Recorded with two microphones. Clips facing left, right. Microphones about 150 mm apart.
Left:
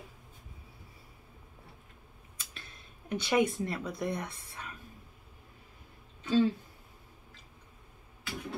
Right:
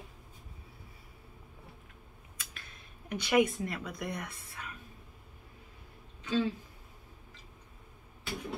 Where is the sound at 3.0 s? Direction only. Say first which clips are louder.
Right 1 dB; 25° left (ahead or behind).